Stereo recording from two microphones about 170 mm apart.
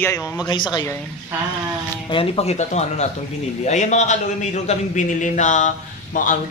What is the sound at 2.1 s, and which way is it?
A man's voice, 35° left (ahead or behind).